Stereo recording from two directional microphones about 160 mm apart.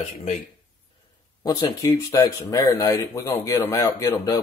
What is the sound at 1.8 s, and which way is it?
Speech, 20° left (ahead or behind).